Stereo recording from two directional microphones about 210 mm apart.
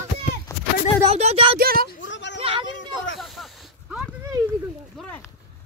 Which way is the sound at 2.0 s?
60° left (ahead or behind).